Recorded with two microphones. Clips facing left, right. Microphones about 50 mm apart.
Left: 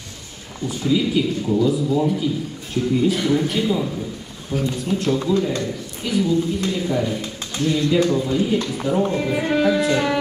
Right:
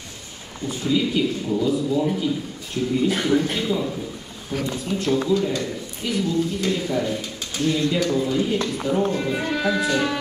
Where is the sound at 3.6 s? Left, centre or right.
Centre.